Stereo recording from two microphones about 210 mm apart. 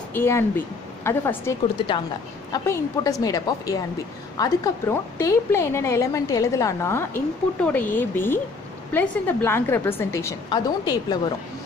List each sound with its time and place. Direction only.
0.1 s a woman's voice: 10° left (ahead or behind)
2.5 s a woman's voice: 15° left (ahead or behind)